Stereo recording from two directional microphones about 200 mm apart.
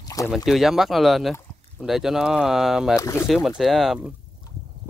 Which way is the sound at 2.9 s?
15° left (ahead or behind).